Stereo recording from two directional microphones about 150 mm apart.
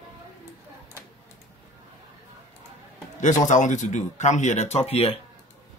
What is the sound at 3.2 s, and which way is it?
Speech, 55° left (ahead or behind).